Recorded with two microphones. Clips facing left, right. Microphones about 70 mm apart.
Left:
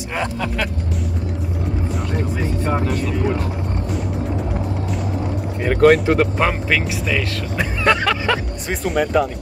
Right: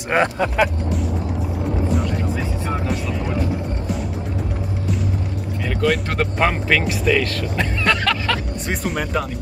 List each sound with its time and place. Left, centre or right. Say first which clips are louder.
1.9 s music: right 2 dB; centre
2.8 s speech: left 3 dB; centre
5.7 s vehicle: left 8 dB; left
6.0 s speech: left 3 dB; centre
7.8 s music: left 4 dB; centre
8.6 s speech: left 5 dB; centre